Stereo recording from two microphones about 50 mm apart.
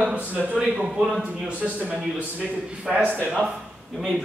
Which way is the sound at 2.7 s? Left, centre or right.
Centre.